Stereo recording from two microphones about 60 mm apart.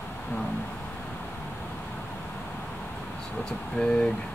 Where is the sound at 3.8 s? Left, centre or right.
Centre.